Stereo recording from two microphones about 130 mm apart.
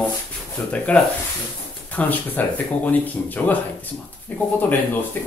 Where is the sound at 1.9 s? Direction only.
10° left (ahead or behind).